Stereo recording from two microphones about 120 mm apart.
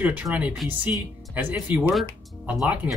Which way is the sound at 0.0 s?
15° right (ahead or behind).